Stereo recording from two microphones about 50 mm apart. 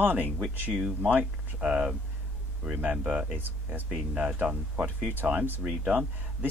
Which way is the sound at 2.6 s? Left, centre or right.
Right.